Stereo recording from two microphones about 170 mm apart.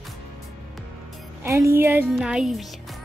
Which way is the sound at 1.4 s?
15° right (ahead or behind).